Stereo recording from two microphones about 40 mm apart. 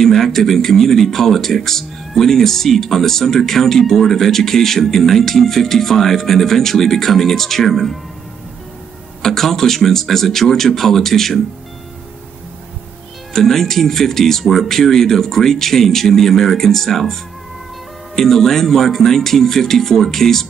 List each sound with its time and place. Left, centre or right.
0.0 s speech: centre
9.2 s speech: centre
13.3 s speech: centre